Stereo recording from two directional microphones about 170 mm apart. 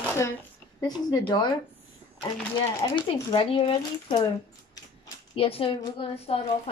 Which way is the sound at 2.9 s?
30° left (ahead or behind).